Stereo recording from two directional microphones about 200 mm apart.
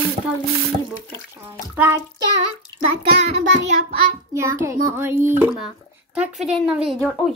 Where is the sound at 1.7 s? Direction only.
10° right (ahead or behind).